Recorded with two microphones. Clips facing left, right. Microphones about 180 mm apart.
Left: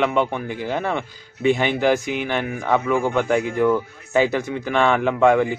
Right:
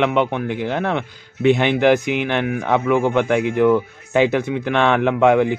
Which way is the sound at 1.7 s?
65° right (ahead or behind).